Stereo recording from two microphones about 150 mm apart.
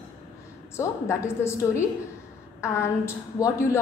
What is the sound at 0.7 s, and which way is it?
A woman's voice, 20° left (ahead or behind).